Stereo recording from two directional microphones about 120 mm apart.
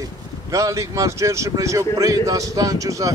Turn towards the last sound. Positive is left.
turn(degrees=-30)  # may be behind; listen again after turning